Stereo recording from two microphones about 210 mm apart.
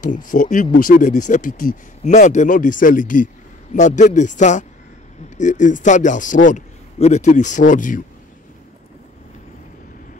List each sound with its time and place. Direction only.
0.0 s speech: 40° left (ahead or behind)